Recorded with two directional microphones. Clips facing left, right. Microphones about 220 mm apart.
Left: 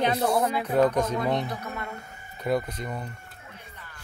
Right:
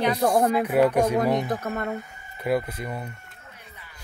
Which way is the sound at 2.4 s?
5° right (ahead or behind).